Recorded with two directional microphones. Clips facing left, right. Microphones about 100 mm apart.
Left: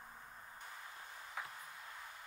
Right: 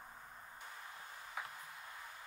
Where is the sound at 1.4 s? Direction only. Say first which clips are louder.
Even; 20° right (ahead or behind).